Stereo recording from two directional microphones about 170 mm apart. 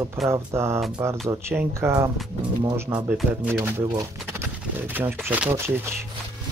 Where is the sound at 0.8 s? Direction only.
5° right (ahead or behind).